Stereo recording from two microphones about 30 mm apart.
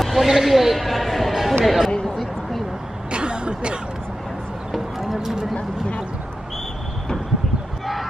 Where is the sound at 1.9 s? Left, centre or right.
Left.